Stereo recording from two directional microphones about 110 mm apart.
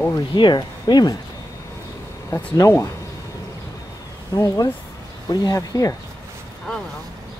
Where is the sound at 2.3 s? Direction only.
30° left (ahead or behind).